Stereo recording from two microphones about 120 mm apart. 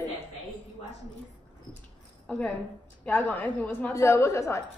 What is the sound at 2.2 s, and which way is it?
A woman's voice, 10° left (ahead or behind).